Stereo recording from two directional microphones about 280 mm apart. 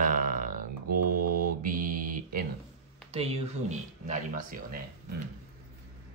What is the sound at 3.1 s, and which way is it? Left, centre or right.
Speech, right.